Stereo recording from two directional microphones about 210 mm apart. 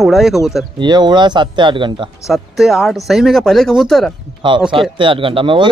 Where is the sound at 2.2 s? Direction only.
Centre (ahead or behind).